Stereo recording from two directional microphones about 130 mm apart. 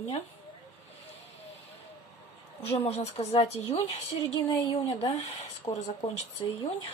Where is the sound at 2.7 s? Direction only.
50° left (ahead or behind).